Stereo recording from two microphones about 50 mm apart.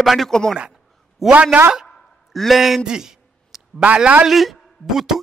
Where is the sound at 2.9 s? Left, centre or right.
Centre.